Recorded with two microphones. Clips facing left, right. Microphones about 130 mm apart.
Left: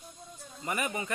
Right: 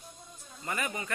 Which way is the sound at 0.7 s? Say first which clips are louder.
Left 2 dB; 20° left (ahead or behind).